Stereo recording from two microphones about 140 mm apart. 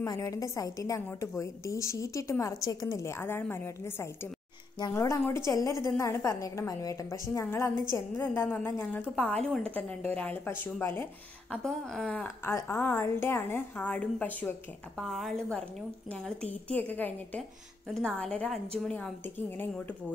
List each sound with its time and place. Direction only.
0.0 s a woman's voice: 25° left (ahead or behind)
11.5 s a woman's voice: 5° left (ahead or behind)